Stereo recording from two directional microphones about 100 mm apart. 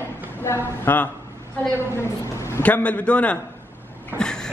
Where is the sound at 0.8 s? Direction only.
15° left (ahead or behind).